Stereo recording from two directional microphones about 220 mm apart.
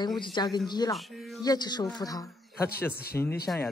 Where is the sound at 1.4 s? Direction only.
20° left (ahead or behind).